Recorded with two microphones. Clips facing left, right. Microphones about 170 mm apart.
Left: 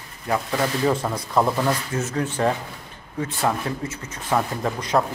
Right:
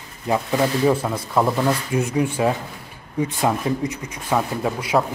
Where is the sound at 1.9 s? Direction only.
15° right (ahead or behind).